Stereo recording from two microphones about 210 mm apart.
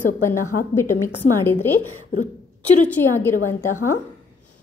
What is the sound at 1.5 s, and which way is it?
Speech, 90° left.